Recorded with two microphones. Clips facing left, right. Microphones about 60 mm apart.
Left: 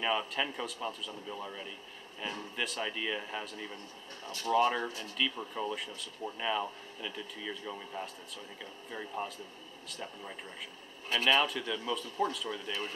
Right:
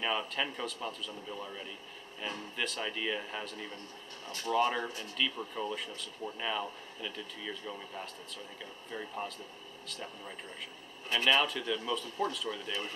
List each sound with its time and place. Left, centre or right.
0.0 s speech: centre